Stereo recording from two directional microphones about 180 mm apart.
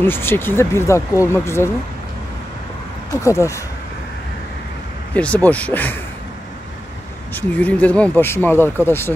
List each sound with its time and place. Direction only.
0.0 s speech: 10° left (ahead or behind)
3.1 s speech: 15° left (ahead or behind)
5.1 s speech: 10° left (ahead or behind)
7.3 s speech: 10° left (ahead or behind)